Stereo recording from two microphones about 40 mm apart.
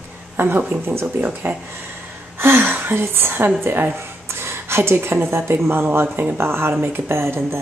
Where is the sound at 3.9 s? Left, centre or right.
Right.